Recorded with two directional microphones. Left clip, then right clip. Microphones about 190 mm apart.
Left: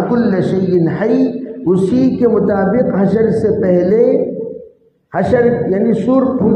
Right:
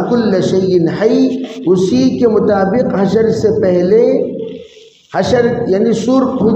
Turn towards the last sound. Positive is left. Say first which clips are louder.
# right 1 dB
turn(degrees=30)  # may be behind; listen again after turning